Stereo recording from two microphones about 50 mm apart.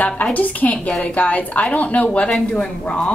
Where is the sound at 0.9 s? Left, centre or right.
Centre.